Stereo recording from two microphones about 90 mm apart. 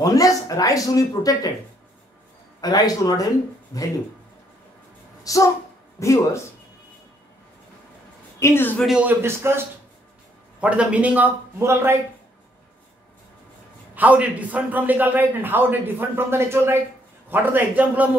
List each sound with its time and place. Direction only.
0.0 s speech: 40° left (ahead or behind)
2.6 s speech: 45° left (ahead or behind)
5.2 s speech: 40° left (ahead or behind)
8.4 s speech: 30° left (ahead or behind)
9.0 s a man's voice: 25° right (ahead or behind)
10.6 s a man's voice: 15° right (ahead or behind)
11.6 s a man's voice: 30° right (ahead or behind)
13.9 s a man's voice: 15° right (ahead or behind)